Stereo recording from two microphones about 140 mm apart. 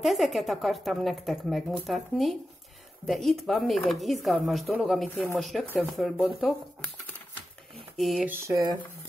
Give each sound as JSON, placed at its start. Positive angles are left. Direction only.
{"t": 0.0, "sound": "speech", "side_deg": 0}
{"t": 8.0, "sound": "speech", "side_deg": 0}
{"t": 8.3, "sound": "speech", "side_deg": -20}